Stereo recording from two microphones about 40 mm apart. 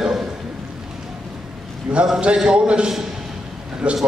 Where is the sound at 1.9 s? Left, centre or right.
Right.